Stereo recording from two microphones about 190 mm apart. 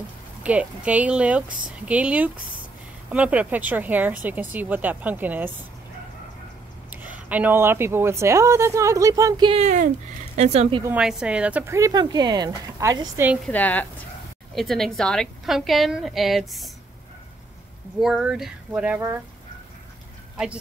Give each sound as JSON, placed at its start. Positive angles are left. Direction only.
{"t": 0.4, "sound": "speech", "side_deg": -5}
{"t": 6.9, "sound": "speech", "side_deg": -10}
{"t": 9.6, "sound": "speech", "side_deg": -40}
{"t": 10.8, "sound": "speech", "side_deg": -5}
{"t": 13.5, "sound": "a woman's voice", "side_deg": 10}
{"t": 17.9, "sound": "a woman's voice", "side_deg": -5}